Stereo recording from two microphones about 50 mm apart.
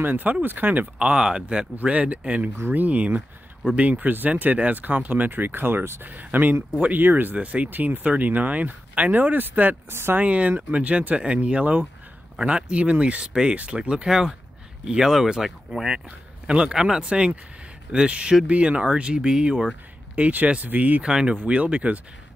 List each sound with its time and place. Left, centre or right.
0.0 s speech: right; by 1.7 s centre
1.8 s speech: right
7.3 s speech: right
10.1 s speech: right; by 16.0 s centre
16.4 s speech: centre
20.2 s speech: right
21.0 s speech: centre